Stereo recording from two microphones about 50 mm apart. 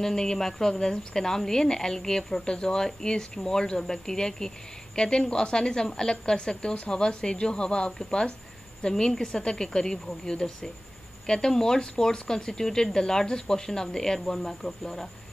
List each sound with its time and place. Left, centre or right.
0.0 s a woman's voice: centre